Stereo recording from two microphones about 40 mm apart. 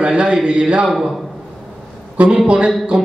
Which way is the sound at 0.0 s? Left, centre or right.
Right.